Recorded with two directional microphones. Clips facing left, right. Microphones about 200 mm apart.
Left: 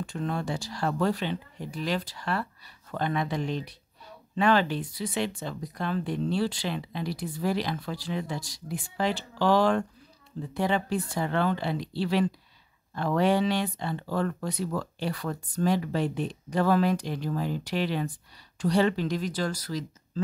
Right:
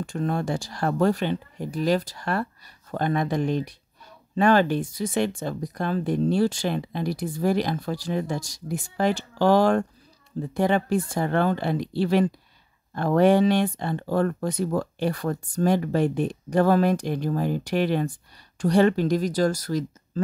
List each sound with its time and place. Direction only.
0.0 s speech: 45° right (ahead or behind)